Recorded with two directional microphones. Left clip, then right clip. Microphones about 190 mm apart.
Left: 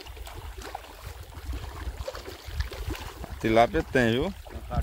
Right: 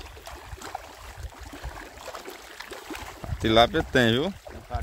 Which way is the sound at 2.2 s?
45° right (ahead or behind).